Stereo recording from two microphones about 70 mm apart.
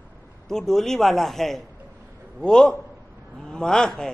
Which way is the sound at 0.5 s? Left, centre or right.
Centre.